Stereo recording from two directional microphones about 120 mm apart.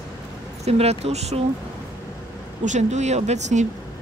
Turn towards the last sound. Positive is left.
turn(degrees=-75)  # may be behind; listen again after turning